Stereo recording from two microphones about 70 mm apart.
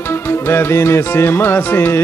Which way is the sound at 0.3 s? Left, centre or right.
Left.